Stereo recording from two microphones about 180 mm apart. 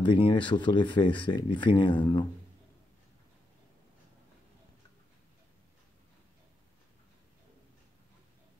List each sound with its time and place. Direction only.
0.0 s speech: 30° left (ahead or behind)